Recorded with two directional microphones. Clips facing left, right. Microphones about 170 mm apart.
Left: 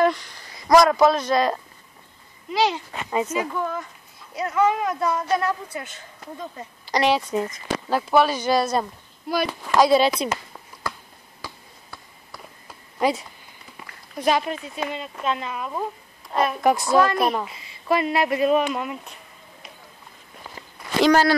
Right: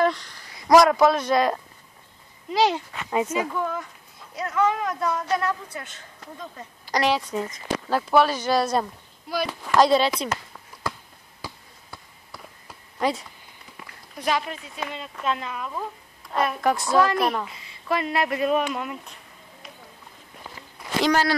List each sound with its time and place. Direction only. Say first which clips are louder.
0.0 s speech: left 2 dB; 5° left (ahead or behind)
0.7 s a man's voice: even; 5° right (ahead or behind)
2.5 s speech: right 1 dB; 45° right (ahead or behind)
3.1 s speech: even; 10° right (ahead or behind)
3.5 s a man's voice: left 1 dB; centre (ahead or behind)
11.4 s a sound: even; 15° right (ahead or behind)
13.0 s speech: left 3 dB; 10° left (ahead or behind)
14.2 s speech: left 4 dB; 20° left (ahead or behind)
15.2 s a man's voice: left 1 dB; 5° left (ahead or behind)
21.1 s speech: left 4 dB; 45° left (ahead or behind)